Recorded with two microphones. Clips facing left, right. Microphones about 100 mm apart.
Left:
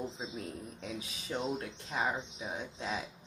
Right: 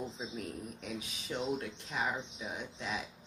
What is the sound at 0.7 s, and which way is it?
Speech, 30° left (ahead or behind).